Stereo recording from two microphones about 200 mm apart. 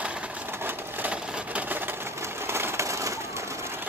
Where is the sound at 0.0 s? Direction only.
5° right (ahead or behind).